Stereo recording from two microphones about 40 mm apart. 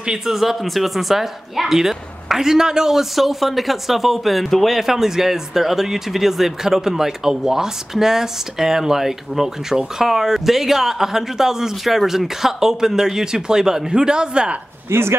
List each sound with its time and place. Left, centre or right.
0.2 s speech: centre
4.7 s speech: centre
14.9 s speech: right